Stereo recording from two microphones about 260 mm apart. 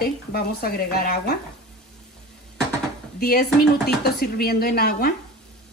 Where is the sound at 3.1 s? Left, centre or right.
Left.